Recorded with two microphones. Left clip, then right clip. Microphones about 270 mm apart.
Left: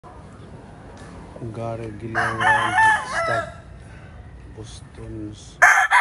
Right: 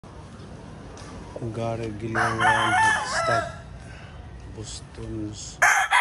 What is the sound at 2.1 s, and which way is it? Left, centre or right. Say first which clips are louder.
Chicken: left 2 dB; left.